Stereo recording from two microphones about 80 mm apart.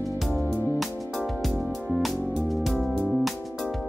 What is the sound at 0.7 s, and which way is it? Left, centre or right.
Music, centre.